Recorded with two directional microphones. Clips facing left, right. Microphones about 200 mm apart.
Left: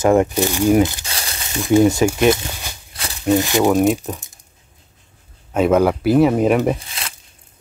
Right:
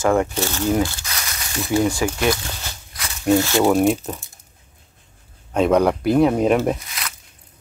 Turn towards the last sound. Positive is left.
turn(degrees=30)  # may be behind; listen again after turning